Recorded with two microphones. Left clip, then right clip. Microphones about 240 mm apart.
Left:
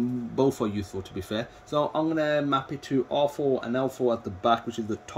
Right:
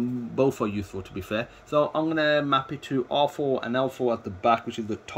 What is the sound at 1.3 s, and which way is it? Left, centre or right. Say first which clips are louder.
Speech: right 4 dB; centre.